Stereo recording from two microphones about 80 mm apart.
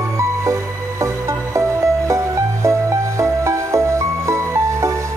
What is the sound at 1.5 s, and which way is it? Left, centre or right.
Music, right.